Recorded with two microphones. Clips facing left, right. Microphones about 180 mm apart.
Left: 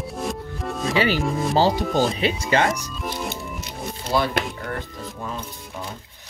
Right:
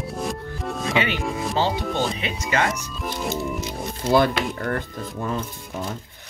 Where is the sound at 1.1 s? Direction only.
Centre (ahead or behind).